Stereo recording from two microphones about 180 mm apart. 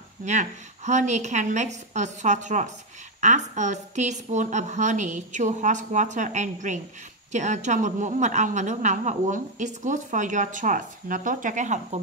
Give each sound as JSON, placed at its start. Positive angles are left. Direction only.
{"t": 0.2, "sound": "a woman's voice", "side_deg": -40}